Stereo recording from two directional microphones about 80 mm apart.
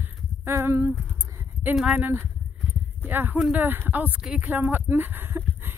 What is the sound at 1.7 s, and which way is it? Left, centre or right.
Speech, centre.